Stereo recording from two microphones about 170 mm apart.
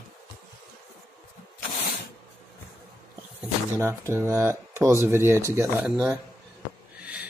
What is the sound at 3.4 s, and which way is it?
Speech, 15° right (ahead or behind).